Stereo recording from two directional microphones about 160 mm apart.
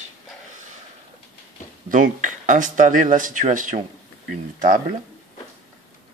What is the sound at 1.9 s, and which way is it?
Speech, 55° right (ahead or behind).